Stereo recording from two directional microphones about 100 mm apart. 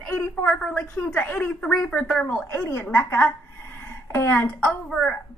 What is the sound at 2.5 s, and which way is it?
A woman's voice, 25° left (ahead or behind).